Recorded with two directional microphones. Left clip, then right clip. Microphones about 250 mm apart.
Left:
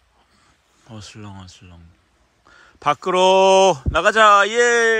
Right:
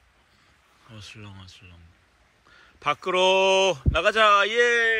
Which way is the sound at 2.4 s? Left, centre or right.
Centre.